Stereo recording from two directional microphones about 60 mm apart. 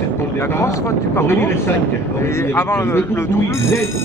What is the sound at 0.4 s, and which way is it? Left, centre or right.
Speech, left.